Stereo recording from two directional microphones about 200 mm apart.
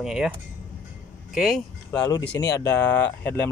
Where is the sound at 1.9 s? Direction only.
15° left (ahead or behind).